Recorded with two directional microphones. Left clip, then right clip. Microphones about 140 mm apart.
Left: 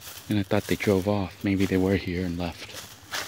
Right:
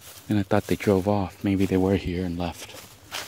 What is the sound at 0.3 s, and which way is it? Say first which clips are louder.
Speech: right 2 dB; 20° right (ahead or behind).